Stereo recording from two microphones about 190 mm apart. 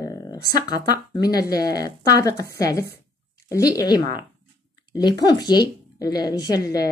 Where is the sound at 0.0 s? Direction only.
20° left (ahead or behind).